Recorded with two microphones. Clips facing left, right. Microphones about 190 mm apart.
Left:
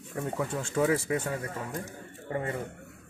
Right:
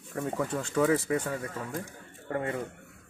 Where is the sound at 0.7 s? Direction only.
10° left (ahead or behind).